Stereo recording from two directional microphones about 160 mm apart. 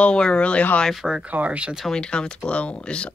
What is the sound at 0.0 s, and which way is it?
Speech, 5° left (ahead or behind).